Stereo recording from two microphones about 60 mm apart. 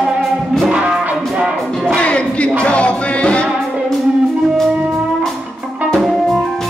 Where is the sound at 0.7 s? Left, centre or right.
Centre.